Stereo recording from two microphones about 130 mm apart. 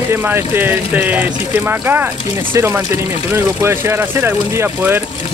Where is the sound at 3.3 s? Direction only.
20° right (ahead or behind).